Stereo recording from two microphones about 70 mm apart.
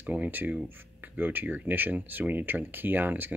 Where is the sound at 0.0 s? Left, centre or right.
Right.